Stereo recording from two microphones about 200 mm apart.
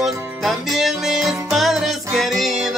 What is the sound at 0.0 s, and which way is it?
Music, centre (ahead or behind).